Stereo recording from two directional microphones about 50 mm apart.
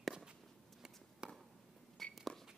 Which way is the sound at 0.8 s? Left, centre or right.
Centre.